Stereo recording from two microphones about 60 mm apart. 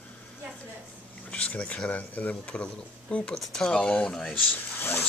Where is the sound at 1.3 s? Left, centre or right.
Left.